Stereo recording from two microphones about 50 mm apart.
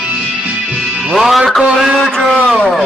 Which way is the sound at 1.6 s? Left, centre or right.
Centre.